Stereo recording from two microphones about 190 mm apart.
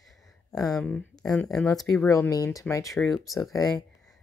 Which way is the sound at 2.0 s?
15° left (ahead or behind).